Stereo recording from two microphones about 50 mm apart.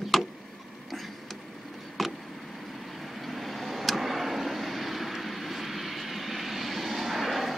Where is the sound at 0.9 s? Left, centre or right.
Centre.